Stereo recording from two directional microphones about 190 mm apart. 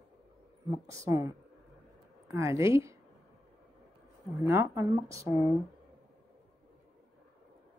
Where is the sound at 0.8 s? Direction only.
15° right (ahead or behind).